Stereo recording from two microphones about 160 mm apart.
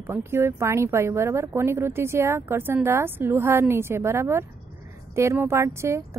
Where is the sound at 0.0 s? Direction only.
15° right (ahead or behind).